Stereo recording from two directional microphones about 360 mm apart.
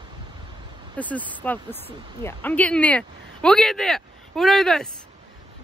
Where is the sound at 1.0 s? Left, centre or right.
Centre.